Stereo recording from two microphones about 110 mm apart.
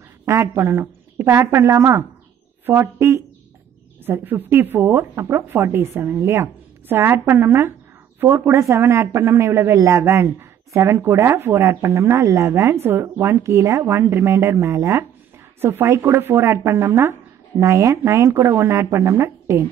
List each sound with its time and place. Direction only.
0.2 s speech: 25° right (ahead or behind)